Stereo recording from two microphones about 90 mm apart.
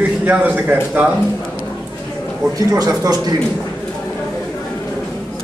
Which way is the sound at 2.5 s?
40° right (ahead or behind).